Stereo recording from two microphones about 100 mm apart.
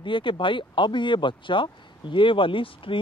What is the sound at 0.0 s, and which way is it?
Speech, 55° left (ahead or behind).